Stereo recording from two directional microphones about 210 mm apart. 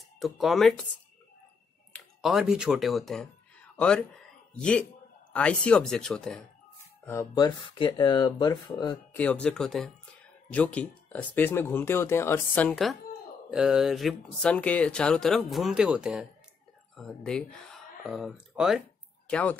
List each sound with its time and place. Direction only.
0.2 s speech: centre (ahead or behind)
1.9 s speech: centre (ahead or behind)
7.1 s speech: 15° left (ahead or behind)
9.1 s speech: 5° left (ahead or behind)